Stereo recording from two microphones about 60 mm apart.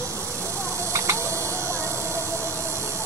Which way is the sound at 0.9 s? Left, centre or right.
Right.